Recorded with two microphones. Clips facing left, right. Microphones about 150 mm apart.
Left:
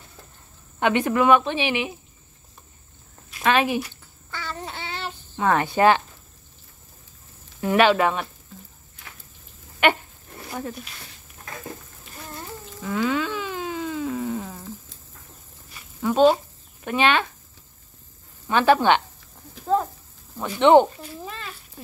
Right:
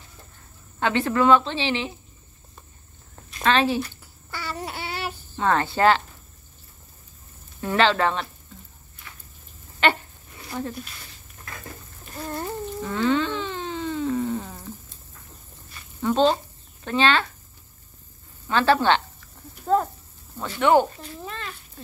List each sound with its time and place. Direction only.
0.7 s speech: 15° left (ahead or behind)
3.4 s speech: 15° left (ahead or behind)
4.3 s child singing: 10° right (ahead or behind)
5.3 s speech: 15° left (ahead or behind)
7.6 s speech: 15° left (ahead or behind)
9.8 s dog: 15° left (ahead or behind)
12.8 s a sound: 5° left (ahead or behind)
16.0 s speech: 10° left (ahead or behind)
18.5 s speech: 15° left (ahead or behind)
19.6 s a sound: centre (ahead or behind)
20.4 s speech: 20° left (ahead or behind)
21.2 s a sound: centre (ahead or behind)